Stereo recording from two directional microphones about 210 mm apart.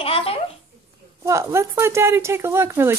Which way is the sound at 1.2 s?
15° right (ahead or behind).